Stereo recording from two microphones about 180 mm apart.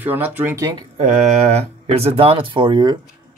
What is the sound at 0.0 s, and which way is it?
Speech, 10° right (ahead or behind).